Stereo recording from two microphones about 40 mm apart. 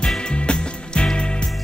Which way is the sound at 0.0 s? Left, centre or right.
Centre.